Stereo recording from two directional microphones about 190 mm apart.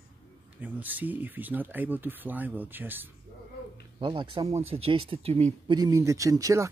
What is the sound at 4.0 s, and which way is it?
Speech, 25° right (ahead or behind).